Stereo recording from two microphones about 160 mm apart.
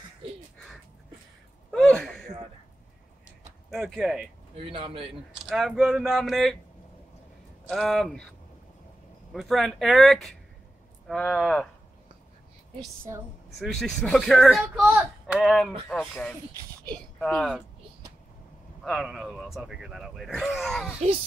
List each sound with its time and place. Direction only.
1.7 s a sound: 5° left (ahead or behind)
3.7 s speech: 5° right (ahead or behind)
4.6 s a man's voice: 35° right (ahead or behind)
5.5 s speech: centre (ahead or behind)
7.6 s speech: centre (ahead or behind)
9.3 s speech: centre (ahead or behind)
13.6 s speech: centre (ahead or behind)
18.8 s speech: centre (ahead or behind)